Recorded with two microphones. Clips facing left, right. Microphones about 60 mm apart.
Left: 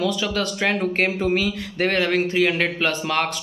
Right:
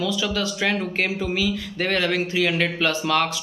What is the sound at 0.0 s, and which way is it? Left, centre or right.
A man's voice, left.